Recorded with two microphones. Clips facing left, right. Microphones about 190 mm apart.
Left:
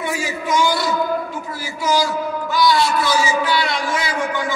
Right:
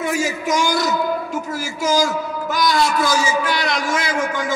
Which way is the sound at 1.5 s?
45° right (ahead or behind).